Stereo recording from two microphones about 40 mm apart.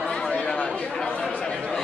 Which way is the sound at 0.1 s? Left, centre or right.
Left.